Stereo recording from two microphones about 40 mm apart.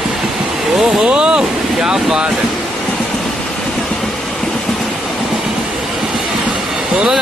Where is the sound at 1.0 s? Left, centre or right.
Right.